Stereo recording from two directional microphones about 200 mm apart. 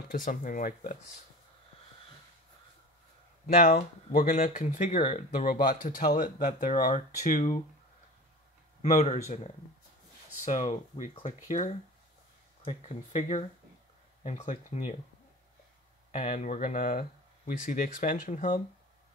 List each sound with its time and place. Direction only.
0.1 s speech: 40° left (ahead or behind)
3.4 s speech: 45° left (ahead or behind)
8.8 s speech: 35° left (ahead or behind)
16.1 s speech: 40° left (ahead or behind)